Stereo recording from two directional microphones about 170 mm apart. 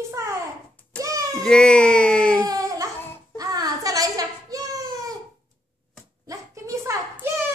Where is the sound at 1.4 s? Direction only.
5° left (ahead or behind).